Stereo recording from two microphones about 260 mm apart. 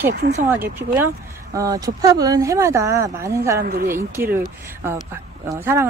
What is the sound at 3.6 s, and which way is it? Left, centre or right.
Speech, right.